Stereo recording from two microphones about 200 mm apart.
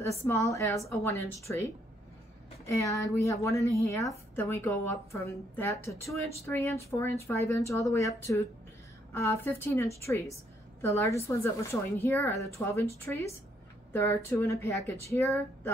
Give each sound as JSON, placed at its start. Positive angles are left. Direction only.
{"t": 0.0, "sound": "speech", "side_deg": 15}
{"t": 2.6, "sound": "speech", "side_deg": 15}